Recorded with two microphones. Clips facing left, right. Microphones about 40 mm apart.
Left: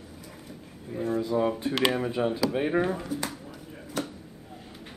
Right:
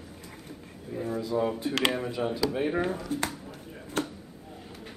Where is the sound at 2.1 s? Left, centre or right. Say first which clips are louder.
Left 2 dB; centre.